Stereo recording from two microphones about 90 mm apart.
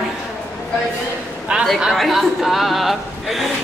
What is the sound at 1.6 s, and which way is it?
Speech, centre (ahead or behind).